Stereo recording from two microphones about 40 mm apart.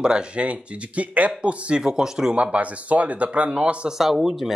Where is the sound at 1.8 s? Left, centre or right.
Centre.